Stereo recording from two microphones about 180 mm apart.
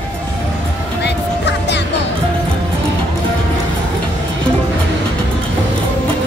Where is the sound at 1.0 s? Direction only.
75° left (ahead or behind).